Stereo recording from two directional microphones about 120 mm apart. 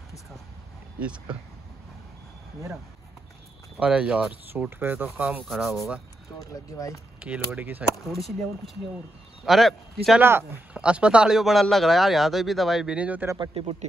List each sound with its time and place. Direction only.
0.9 s speech: 10° right (ahead or behind)
3.8 s speech: 10° right (ahead or behind)
5.4 s speech: centre (ahead or behind)
6.4 s speech: 30° left (ahead or behind)
7.2 s speech: 10° right (ahead or behind)
8.1 s speech: centre (ahead or behind)
10.2 s speech: 20° right (ahead or behind)
13.4 s speech: 50° right (ahead or behind)